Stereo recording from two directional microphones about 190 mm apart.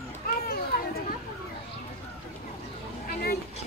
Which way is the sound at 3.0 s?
50° left (ahead or behind).